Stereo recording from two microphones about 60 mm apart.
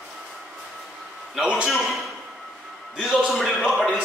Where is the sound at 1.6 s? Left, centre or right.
Centre.